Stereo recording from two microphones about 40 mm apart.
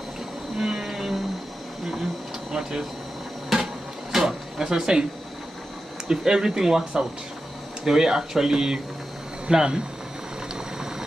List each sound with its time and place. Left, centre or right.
0.6 s whale vocalization: centre
3.4 s drawer open or close: centre
6.0 s speech: centre
10.5 s boiling: centre